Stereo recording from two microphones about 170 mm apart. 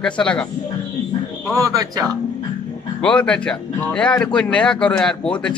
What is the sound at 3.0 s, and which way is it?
A man's voice, 5° left (ahead or behind).